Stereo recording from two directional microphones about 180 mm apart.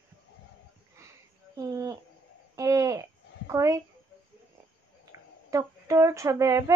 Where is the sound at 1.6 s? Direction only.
20° right (ahead or behind).